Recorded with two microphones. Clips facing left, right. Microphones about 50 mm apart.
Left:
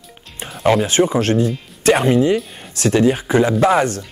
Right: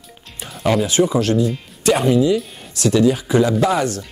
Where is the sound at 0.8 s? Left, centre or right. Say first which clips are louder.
Left 1 dB; left.